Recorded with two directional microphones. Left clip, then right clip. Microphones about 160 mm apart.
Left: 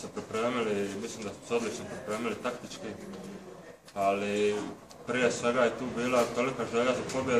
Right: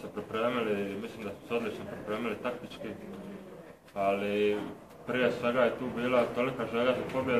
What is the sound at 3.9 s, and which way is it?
A man's voice, 10° left (ahead or behind).